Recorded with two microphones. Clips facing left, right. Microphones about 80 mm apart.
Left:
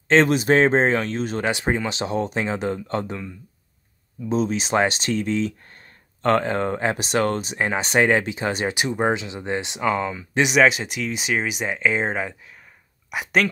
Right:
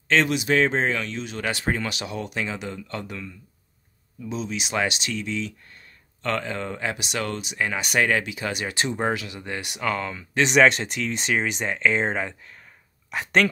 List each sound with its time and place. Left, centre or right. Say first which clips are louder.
0.1 s speech: left 5 dB; left
1.4 s speech: left 1 dB; left
4.3 s speech: left 7 dB; left
8.7 s speech: left 3 dB; centre